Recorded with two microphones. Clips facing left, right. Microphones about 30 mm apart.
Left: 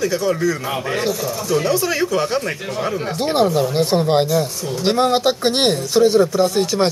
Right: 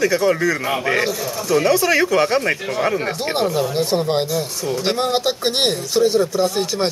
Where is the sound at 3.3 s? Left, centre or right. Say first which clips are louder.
Left 4 dB; centre.